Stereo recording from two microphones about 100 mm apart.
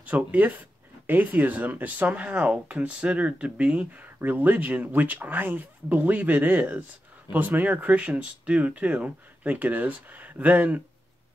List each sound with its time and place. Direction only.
0.0 s speech: 15° right (ahead or behind)